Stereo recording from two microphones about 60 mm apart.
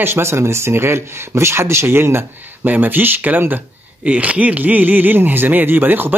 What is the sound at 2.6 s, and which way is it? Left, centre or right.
Speech, right.